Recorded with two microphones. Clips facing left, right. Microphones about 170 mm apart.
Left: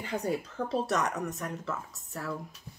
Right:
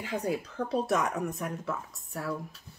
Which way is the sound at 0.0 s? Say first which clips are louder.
Even; centre (ahead or behind).